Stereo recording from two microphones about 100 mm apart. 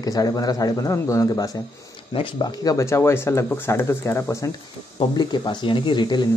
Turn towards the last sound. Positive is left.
turn(degrees=50)  # may be behind; listen again after turning